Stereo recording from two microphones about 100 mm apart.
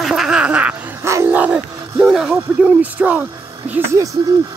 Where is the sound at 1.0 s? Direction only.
30° right (ahead or behind).